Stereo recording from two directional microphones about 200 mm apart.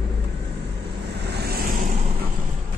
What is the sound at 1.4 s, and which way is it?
Vehicle, 50° right (ahead or behind).